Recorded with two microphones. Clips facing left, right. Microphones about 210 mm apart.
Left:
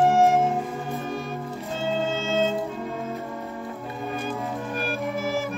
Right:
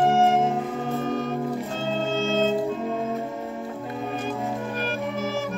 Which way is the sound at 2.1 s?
30° right (ahead or behind).